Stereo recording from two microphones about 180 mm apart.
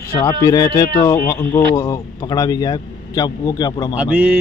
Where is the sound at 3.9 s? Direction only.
10° right (ahead or behind).